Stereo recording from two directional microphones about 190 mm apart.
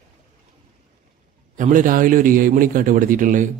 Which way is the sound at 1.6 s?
45° right (ahead or behind).